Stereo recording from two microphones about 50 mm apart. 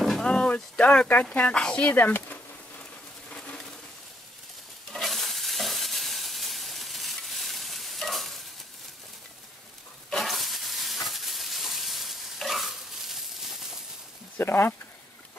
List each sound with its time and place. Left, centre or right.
0.2 s a sound: centre
1.5 s speech: centre
1.9 s speech: left
4.9 s stir: centre
10.1 s stir: centre
14.4 s speech: left